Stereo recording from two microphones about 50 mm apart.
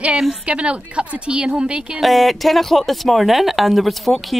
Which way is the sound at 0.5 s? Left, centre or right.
Right.